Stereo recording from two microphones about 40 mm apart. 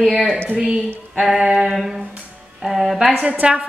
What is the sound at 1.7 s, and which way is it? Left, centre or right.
A woman's voice, centre.